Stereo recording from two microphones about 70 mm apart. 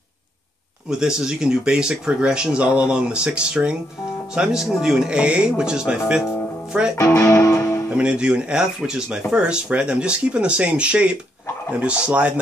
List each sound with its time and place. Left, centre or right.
0.8 s speech: centre
7.2 s music: left
7.9 s speech: centre